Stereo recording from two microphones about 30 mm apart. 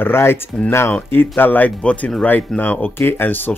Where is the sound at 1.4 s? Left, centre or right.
Left.